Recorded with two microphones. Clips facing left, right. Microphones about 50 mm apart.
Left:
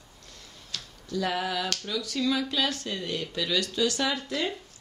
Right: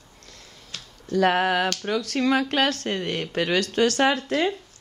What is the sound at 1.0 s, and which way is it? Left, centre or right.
Speech, right.